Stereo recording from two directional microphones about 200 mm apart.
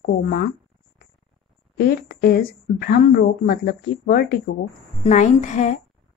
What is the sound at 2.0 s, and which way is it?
Speech, 50° left (ahead or behind).